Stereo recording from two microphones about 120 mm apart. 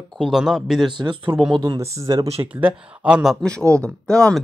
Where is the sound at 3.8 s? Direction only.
10° left (ahead or behind).